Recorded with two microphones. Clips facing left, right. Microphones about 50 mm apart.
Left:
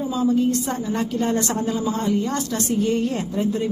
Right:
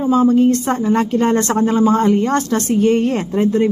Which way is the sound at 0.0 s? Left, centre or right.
Right.